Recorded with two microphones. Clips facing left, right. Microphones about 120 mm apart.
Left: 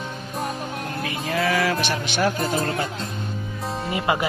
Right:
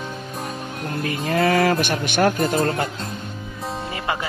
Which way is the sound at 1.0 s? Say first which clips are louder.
Right 4 dB; 45° right (ahead or behind).